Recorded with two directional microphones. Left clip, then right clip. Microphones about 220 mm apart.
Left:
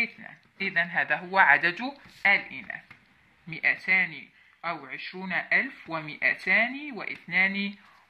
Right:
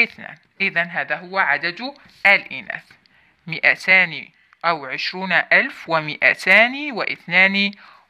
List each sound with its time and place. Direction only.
0.0 s speech: 45° right (ahead or behind); by 2.0 s 15° right (ahead or behind)
2.2 s speech: 50° right (ahead or behind)